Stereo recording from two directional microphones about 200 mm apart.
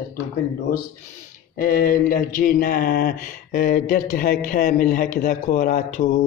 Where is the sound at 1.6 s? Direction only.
45° left (ahead or behind).